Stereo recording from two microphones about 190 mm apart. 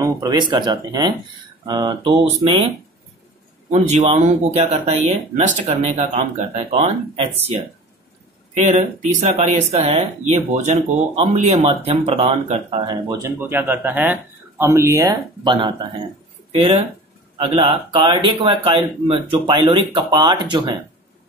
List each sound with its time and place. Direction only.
0.0 s speech: 20° right (ahead or behind)
3.7 s speech: 35° right (ahead or behind)
8.6 s speech: 35° right (ahead or behind)
13.1 s speech: 15° right (ahead or behind)